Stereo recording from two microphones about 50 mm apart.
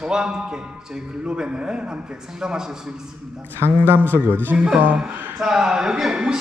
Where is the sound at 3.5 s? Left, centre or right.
Right.